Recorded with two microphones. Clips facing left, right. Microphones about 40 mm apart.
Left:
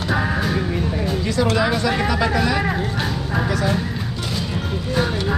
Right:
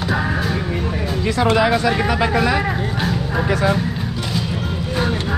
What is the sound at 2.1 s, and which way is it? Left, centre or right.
Speech, centre.